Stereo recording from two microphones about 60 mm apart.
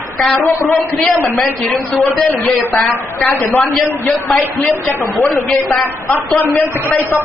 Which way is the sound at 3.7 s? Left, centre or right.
Centre.